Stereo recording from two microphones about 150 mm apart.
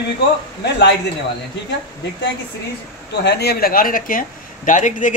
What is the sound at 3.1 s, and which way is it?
Speech, 90° left.